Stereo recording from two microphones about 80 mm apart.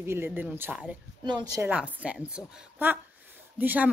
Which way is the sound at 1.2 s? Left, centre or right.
Right.